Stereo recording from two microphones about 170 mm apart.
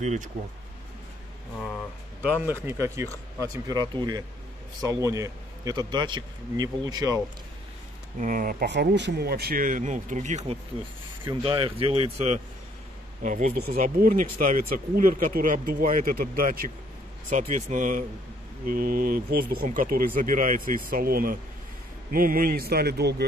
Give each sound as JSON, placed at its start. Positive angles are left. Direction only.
{"t": 0.0, "sound": "speech", "side_deg": -45}
{"t": 2.2, "sound": "a man's voice", "side_deg": -10}
{"t": 8.2, "sound": "speech", "side_deg": -55}
{"t": 8.6, "sound": "speech", "side_deg": -90}
{"t": 13.2, "sound": "speech", "side_deg": -50}